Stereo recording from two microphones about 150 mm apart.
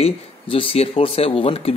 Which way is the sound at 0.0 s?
40° left (ahead or behind).